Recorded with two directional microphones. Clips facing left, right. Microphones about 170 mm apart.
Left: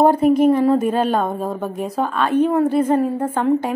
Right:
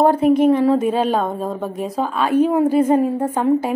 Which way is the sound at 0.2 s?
Centre (ahead or behind).